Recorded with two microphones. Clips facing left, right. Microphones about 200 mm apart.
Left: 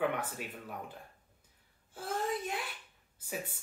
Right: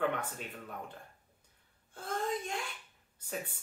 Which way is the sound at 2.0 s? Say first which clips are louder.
Even; 5° left (ahead or behind).